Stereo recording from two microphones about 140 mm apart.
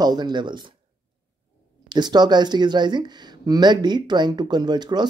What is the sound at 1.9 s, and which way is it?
Speech, 30° right (ahead or behind).